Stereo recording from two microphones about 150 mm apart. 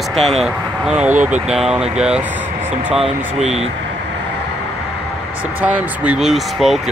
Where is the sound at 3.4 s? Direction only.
45° right (ahead or behind).